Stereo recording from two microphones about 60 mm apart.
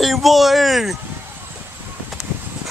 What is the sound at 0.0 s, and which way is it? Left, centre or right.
Speech, centre.